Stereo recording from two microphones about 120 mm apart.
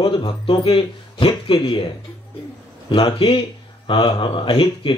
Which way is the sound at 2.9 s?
50° left (ahead or behind).